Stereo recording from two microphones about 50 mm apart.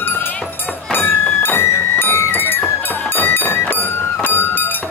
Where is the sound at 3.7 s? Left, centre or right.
Left.